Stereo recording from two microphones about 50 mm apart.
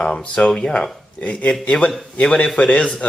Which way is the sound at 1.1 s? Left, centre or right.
Left.